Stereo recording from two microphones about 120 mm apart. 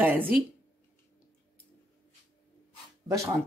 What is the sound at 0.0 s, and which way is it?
Speech, 15° right (ahead or behind).